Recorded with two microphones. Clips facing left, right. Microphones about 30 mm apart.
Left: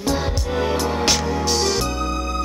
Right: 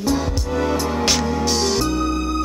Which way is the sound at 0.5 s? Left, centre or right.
Left.